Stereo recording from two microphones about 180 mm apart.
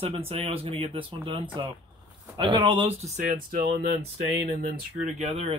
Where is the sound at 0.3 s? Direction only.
30° right (ahead or behind).